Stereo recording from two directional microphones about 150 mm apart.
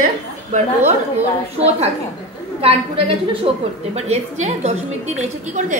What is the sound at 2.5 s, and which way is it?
A woman's voice, 40° right (ahead or behind).